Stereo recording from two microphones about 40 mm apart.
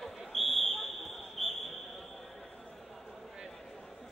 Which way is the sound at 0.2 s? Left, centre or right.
Centre.